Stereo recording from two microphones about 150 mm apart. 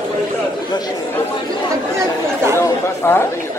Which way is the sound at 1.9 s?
20° right (ahead or behind).